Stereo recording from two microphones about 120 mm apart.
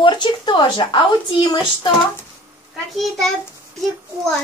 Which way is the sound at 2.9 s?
5° left (ahead or behind).